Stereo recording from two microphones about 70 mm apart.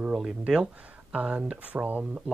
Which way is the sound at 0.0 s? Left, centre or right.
Centre.